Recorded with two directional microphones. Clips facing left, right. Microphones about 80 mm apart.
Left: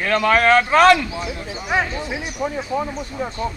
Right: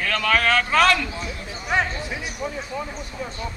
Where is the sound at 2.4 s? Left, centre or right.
Left.